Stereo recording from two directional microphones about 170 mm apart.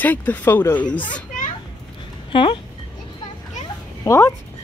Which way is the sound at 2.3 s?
30° left (ahead or behind).